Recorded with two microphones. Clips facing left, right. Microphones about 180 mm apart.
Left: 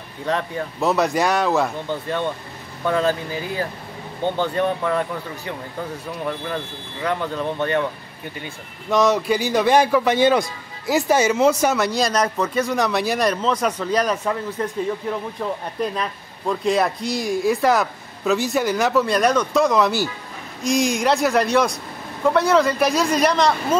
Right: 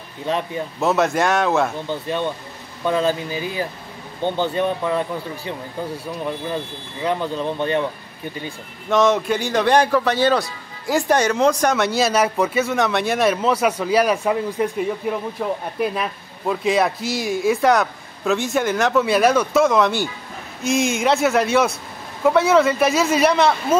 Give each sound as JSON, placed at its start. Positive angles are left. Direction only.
{"t": 0.3, "sound": "speech", "side_deg": -15}
{"t": 0.7, "sound": "speech", "side_deg": 0}
{"t": 2.8, "sound": "speech", "side_deg": -20}
{"t": 8.9, "sound": "a man's voice", "side_deg": 0}
{"t": 10.9, "sound": "speech", "side_deg": 5}